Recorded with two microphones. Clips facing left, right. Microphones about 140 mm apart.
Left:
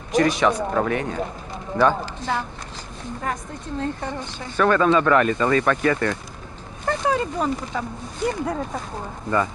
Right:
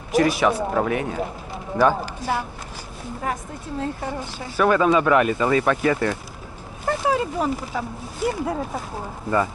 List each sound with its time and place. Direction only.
0.1 s speech: 5° right (ahead or behind)